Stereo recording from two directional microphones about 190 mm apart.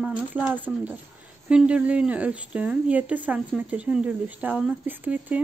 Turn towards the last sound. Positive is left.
turn(degrees=-10)  # may be behind; listen again after turning